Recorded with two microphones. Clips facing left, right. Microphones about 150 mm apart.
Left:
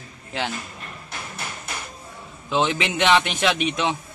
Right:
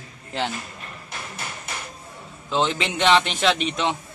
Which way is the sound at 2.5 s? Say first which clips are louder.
Left 1 dB; 10° left (ahead or behind).